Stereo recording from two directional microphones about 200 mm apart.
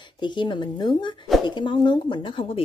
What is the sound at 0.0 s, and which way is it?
Speech, 25° left (ahead or behind).